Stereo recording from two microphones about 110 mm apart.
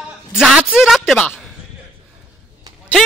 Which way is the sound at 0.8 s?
Centre (ahead or behind).